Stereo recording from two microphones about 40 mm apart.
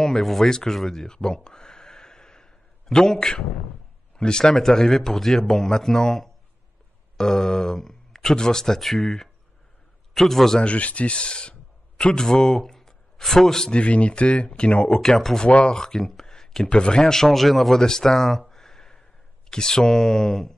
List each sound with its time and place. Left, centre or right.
0.0 s a sound: centre
4.2 s speech: centre
10.6 s a man's voice: left; by 13.7 s centre
13.7 s speech: left
15.0 s speech: centre
16.6 s speech: left
17.1 s speech: centre
18.5 s a sound: centre
19.5 s speech: centre